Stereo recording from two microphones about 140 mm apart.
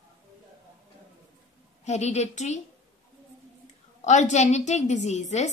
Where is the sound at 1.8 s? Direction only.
55° left (ahead or behind).